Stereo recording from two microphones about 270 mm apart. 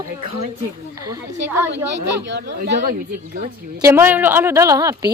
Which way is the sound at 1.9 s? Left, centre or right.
Right.